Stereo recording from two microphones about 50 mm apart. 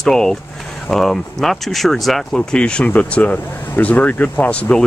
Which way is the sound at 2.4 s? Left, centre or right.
Centre.